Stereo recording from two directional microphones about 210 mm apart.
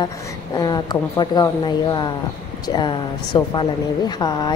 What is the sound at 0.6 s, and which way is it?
A woman's voice, 20° left (ahead or behind).